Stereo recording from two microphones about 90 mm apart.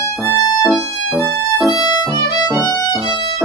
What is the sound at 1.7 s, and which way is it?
Violin, 45° left (ahead or behind).